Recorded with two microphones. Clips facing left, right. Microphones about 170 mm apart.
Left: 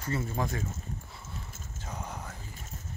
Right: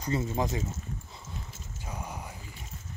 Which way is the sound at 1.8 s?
10° right (ahead or behind).